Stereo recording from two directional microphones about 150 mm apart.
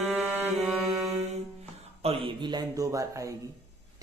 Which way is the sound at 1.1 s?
45° right (ahead or behind).